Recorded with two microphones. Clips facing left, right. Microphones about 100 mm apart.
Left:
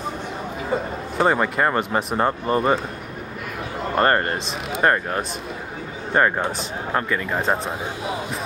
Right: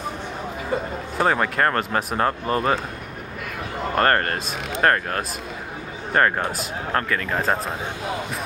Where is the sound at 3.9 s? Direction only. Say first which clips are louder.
Left 1 dB; 10° left (ahead or behind).